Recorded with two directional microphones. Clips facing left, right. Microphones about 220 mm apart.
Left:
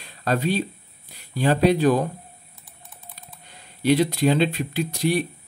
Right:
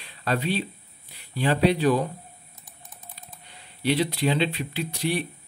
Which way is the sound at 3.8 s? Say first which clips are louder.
Left 5 dB; 45° left (ahead or behind).